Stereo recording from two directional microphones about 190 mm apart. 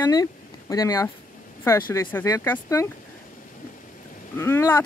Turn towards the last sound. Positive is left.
turn(degrees=15)  # may be behind; listen again after turning